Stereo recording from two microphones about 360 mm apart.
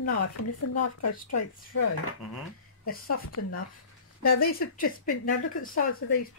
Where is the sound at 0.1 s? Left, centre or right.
Left.